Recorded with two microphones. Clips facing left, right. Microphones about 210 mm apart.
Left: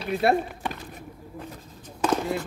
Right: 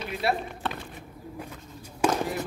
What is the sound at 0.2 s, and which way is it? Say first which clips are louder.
Speech: left 6 dB; 50° left (ahead or behind).